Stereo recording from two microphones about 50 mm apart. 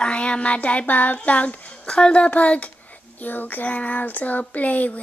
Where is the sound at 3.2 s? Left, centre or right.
Left.